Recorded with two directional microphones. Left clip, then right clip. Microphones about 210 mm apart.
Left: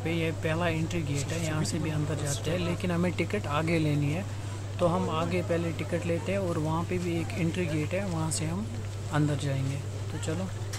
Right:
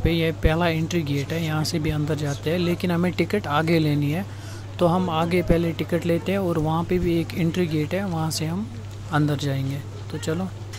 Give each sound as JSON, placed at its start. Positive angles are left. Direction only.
{"t": 0.0, "sound": "speech", "side_deg": -20}